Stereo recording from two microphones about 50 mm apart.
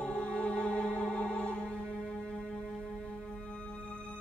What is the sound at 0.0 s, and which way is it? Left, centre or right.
Music, centre.